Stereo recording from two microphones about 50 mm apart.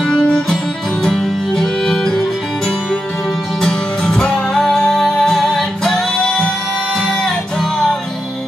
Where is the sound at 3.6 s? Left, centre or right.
Centre.